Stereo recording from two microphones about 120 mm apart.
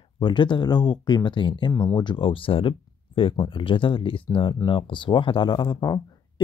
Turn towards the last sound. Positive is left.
turn(degrees=35)  # may be behind; listen again after turning